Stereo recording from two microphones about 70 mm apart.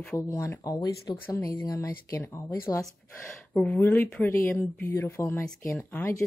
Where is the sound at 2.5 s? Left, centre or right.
Left.